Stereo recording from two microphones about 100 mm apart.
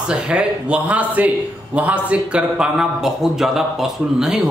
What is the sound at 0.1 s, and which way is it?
A man's voice, 10° right (ahead or behind).